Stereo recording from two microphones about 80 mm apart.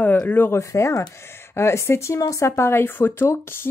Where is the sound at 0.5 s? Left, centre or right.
Left.